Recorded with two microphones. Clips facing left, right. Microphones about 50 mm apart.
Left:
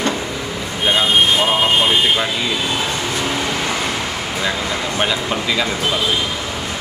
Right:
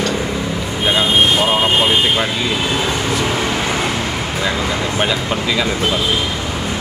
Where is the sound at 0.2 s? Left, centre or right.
Centre.